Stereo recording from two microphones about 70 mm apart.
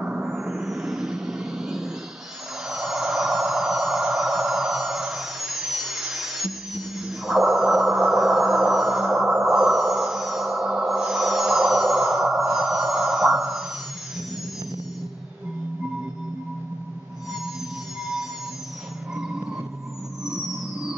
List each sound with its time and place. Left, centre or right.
0.0 s music: centre
0.3 s vehicle: centre
2.7 s a sound: centre
19.1 s vehicle: centre
20.2 s music: centre